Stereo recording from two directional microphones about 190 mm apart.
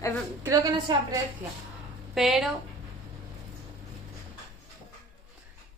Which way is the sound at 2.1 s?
Centre (ahead or behind).